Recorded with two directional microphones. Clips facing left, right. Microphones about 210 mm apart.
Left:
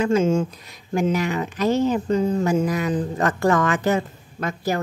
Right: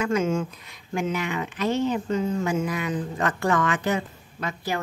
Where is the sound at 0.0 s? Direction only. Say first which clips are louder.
Left 5 dB; 30° left (ahead or behind).